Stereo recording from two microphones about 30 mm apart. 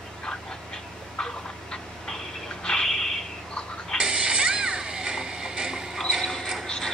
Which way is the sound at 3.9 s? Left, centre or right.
Right.